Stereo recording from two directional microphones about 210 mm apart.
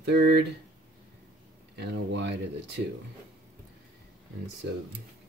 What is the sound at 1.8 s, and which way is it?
Speech, 55° right (ahead or behind).